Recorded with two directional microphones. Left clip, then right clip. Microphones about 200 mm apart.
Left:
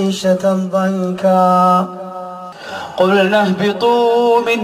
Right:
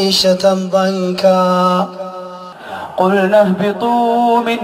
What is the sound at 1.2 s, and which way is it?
Mantra, 55° right (ahead or behind).